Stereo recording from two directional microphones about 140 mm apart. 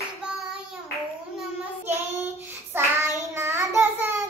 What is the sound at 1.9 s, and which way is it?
Child singing, 20° right (ahead or behind).